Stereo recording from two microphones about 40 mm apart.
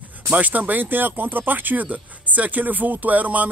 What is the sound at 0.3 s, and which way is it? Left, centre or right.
Speech, right.